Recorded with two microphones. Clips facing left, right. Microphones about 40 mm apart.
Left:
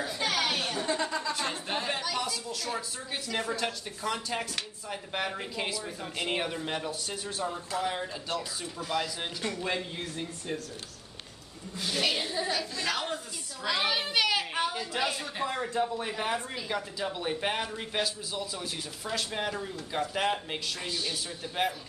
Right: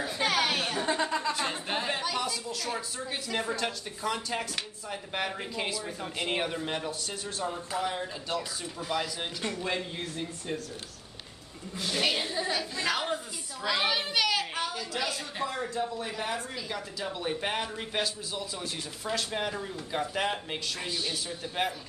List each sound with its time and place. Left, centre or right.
0.0 s a sound: centre
1.4 s a woman's voice: centre
11.8 s a woman's voice: centre
12.7 s a woman's voice: centre
13.6 s a woman's voice: centre